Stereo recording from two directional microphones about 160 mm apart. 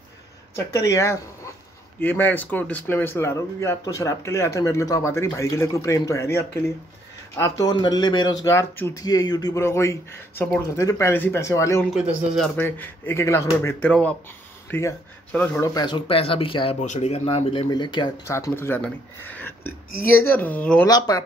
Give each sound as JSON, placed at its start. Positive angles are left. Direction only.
{"t": 0.7, "sound": "speech", "side_deg": 20}
{"t": 11.9, "sound": "a man's voice", "side_deg": -5}
{"t": 12.5, "sound": "speech", "side_deg": 10}
{"t": 15.6, "sound": "speech", "side_deg": 25}
{"t": 16.8, "sound": "speech", "side_deg": 45}
{"t": 18.3, "sound": "speech", "side_deg": 15}
{"t": 20.8, "sound": "speech", "side_deg": 25}